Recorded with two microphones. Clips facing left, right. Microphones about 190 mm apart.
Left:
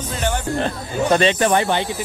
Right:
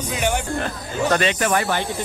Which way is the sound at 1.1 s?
25° left (ahead or behind).